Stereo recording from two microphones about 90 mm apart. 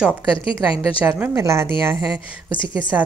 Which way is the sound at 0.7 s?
20° right (ahead or behind).